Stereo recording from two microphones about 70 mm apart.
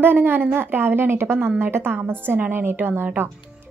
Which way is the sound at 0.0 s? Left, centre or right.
Right.